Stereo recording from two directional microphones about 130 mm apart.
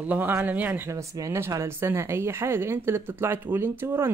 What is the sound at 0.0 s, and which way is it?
Speech, 15° right (ahead or behind).